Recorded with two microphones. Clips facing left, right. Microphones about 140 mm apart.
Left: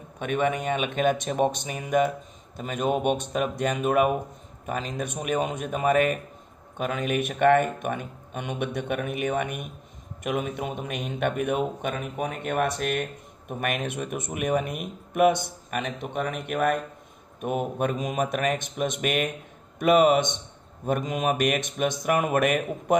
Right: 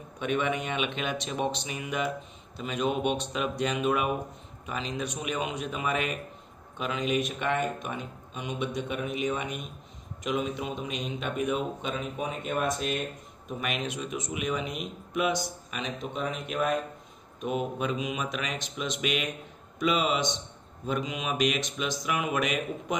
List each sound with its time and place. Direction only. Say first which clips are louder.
0.2 s a man's voice: left 3 dB; 50° left (ahead or behind)